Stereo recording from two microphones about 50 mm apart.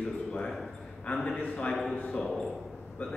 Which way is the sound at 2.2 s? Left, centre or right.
Centre.